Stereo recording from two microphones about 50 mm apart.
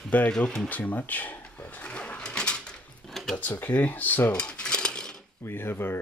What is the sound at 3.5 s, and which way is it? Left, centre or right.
Speech, left.